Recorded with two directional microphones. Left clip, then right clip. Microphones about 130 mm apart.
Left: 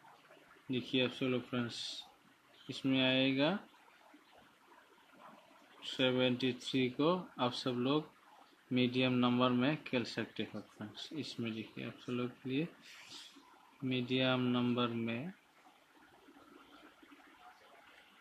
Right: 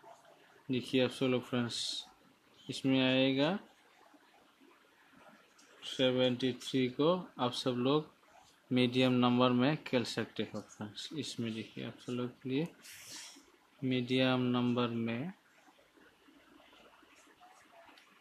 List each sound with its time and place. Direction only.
0.7 s a man's voice: 40° right (ahead or behind)
5.8 s a man's voice: 20° right (ahead or behind)
13.8 s a man's voice: 35° right (ahead or behind)